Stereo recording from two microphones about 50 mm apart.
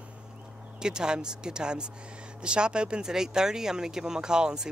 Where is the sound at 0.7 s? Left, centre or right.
Centre.